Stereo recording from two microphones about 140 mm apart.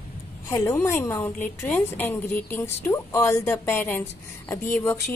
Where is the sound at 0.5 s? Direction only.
20° left (ahead or behind).